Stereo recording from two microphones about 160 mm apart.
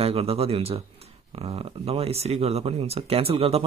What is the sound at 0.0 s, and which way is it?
Speech, 40° right (ahead or behind).